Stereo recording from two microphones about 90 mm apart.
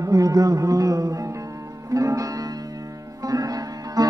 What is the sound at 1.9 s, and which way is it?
Music, 40° right (ahead or behind).